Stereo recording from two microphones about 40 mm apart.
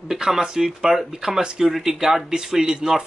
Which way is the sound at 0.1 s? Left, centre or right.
Centre.